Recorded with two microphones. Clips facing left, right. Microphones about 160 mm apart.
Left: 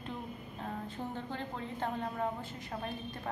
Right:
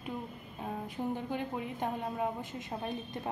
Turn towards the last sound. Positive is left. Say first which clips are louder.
# right 2 dB
turn(degrees=-20)  # may be behind; listen again after turning